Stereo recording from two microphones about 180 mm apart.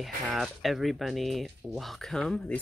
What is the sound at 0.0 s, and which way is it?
Speech, centre (ahead or behind).